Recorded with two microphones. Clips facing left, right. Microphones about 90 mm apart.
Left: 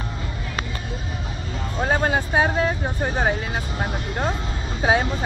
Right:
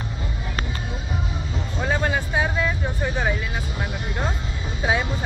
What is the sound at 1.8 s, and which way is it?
Vehicle, 45° left (ahead or behind).